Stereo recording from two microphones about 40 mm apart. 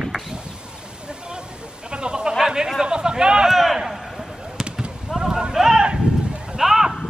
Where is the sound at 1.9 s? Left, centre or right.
Right.